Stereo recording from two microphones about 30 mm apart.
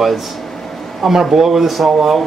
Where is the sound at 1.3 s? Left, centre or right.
Centre.